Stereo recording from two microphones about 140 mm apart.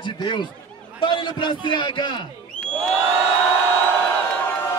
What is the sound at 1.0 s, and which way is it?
A man's voice, 35° left (ahead or behind).